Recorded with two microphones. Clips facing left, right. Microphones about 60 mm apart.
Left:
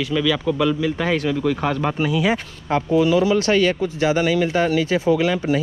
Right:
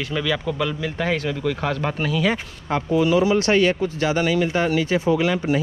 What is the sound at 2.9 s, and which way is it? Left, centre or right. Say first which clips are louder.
Speech: left 1 dB; right.